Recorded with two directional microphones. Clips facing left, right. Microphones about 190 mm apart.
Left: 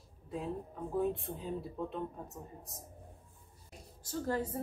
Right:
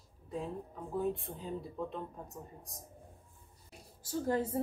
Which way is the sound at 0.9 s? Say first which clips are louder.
Left 1 dB; centre (ahead or behind).